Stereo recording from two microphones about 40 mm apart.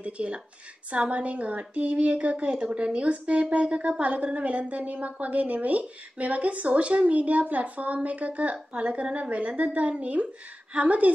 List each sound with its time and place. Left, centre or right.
0.0 s a woman's voice: right